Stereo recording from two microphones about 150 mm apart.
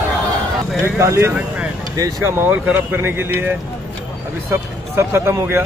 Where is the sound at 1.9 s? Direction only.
20° right (ahead or behind).